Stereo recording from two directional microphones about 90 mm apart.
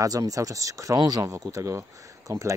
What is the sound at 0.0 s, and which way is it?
Speech, 40° right (ahead or behind).